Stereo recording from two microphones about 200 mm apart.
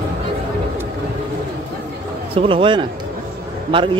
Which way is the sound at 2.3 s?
25° right (ahead or behind).